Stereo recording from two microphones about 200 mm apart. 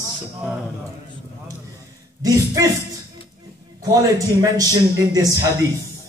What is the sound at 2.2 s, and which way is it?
Speech, 15° right (ahead or behind).